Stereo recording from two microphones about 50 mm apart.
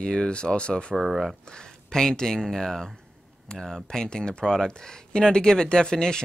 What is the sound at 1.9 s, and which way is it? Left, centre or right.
Speech, centre.